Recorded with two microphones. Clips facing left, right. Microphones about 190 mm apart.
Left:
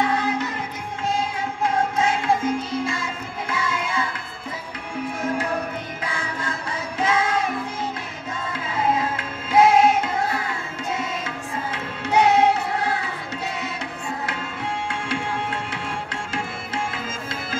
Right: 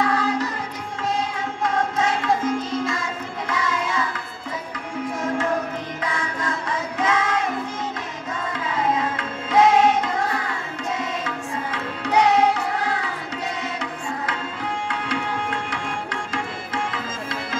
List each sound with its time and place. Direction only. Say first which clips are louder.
0.0 s music: right 1 dB; 25° left (ahead or behind)
1.6 s music: left 1 dB; 30° left (ahead or behind)
3.4 s music: right 2 dB; 30° left (ahead or behind)
6.0 s music: right 3 dB; 30° left (ahead or behind)
8.5 s music: even; 30° left (ahead or behind)
14.9 s music: right 1 dB; 25° left (ahead or behind)
16.7 s music: right 1 dB; 25° left (ahead or behind)